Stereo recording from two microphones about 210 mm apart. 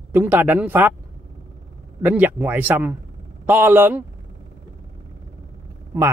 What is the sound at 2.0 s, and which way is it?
Speech, 10° right (ahead or behind).